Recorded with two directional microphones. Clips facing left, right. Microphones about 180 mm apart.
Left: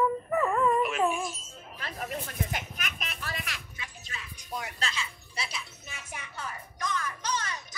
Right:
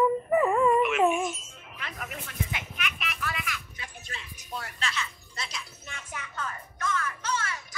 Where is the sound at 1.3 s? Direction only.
35° left (ahead or behind).